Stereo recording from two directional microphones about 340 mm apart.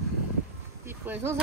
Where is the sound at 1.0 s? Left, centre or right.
Centre.